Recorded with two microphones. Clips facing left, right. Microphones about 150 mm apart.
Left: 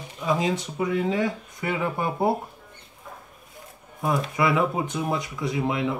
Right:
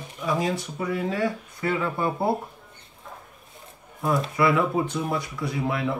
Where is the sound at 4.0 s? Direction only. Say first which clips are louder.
Right 1 dB; 20° left (ahead or behind).